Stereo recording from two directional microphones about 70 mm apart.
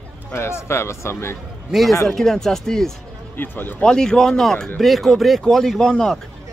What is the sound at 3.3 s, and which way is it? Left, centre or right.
Speech, left.